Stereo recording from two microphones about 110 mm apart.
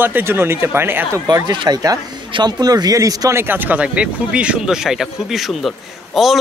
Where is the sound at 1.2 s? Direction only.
40° right (ahead or behind).